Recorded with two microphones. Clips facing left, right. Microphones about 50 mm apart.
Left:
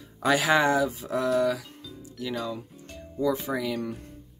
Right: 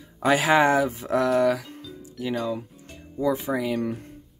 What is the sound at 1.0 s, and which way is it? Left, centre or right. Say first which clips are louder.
Speech: right 4 dB; right.